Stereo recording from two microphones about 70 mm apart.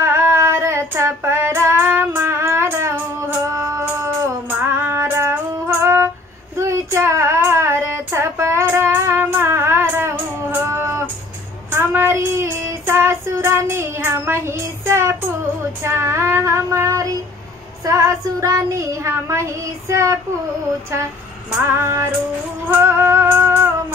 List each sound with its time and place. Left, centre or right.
0.0 s female singing: right
4.5 s music: right
6.6 s child singing: right
21.6 s female singing: right
22.8 s music: right